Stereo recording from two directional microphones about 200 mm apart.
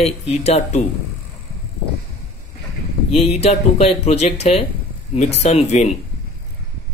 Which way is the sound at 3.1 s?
30° left (ahead or behind).